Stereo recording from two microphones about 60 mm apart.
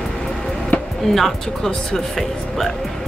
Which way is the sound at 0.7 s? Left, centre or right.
Left.